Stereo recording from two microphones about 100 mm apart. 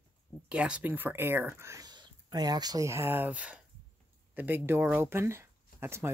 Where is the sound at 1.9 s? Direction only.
45° right (ahead or behind).